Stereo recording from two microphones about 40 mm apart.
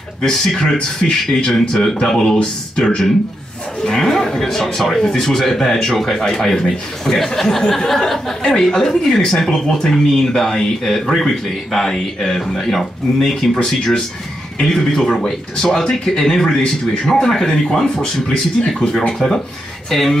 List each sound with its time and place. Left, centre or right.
0.2 s a man's voice: centre
15.0 s a man's voice: centre